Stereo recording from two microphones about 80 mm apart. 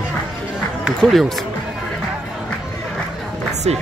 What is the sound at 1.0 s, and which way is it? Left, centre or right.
Speech, centre.